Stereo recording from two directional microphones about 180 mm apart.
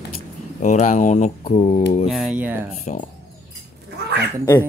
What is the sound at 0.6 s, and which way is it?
Speech, 40° left (ahead or behind).